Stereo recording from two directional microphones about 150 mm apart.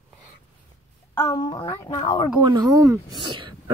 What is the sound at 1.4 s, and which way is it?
Speech, 30° left (ahead or behind).